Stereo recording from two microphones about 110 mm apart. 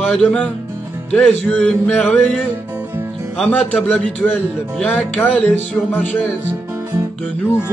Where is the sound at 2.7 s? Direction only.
20° right (ahead or behind).